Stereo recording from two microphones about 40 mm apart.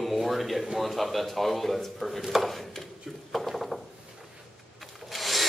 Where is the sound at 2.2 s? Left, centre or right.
Centre.